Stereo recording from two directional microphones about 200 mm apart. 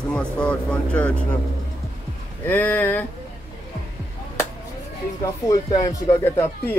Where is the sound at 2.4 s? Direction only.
10° left (ahead or behind).